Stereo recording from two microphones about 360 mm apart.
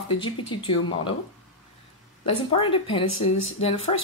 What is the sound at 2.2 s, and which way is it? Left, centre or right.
Speech, centre.